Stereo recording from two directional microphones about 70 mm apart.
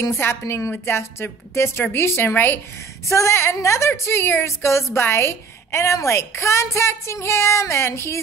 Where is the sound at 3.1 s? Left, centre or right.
Left.